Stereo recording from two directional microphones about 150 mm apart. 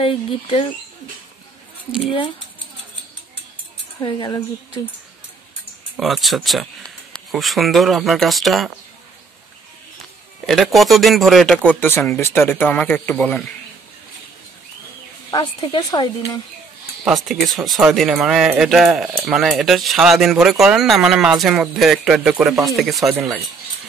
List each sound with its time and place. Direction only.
0.0 s speech: 35° left (ahead or behind)
4.0 s speech: 30° left (ahead or behind)
5.9 s speech: centre (ahead or behind)
10.4 s speech: centre (ahead or behind)
15.3 s speech: 30° left (ahead or behind)
17.0 s speech: centre (ahead or behind)
23.1 s speech: 10° right (ahead or behind)